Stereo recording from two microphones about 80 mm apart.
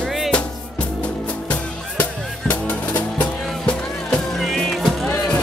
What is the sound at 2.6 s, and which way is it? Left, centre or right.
Music, centre.